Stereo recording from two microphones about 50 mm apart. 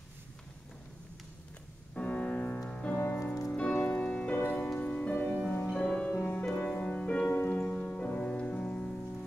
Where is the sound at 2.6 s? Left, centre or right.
Left.